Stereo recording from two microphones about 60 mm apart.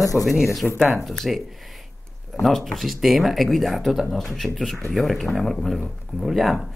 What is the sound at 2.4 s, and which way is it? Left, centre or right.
Speech, centre.